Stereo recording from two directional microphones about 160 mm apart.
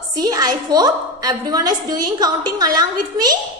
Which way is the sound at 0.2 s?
25° right (ahead or behind).